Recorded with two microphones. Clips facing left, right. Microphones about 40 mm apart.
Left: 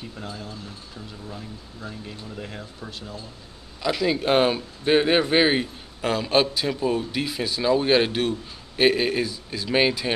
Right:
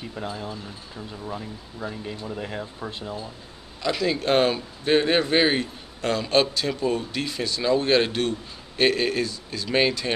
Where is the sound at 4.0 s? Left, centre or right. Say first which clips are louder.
Left 1 dB; centre.